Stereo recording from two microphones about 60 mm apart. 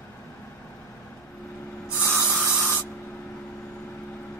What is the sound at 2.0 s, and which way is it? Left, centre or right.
Spray, right.